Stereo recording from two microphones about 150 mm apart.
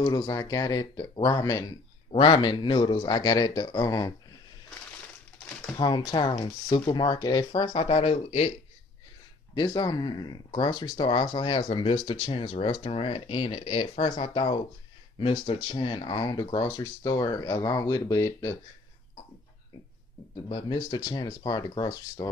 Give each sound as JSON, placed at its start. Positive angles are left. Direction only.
{"t": 0.0, "sound": "speech", "side_deg": 25}
{"t": 5.8, "sound": "speech", "side_deg": 30}
{"t": 9.6, "sound": "speech", "side_deg": 30}
{"t": 20.4, "sound": "speech", "side_deg": 30}